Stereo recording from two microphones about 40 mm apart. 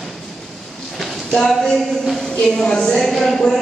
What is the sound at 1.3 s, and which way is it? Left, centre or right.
Speech, centre.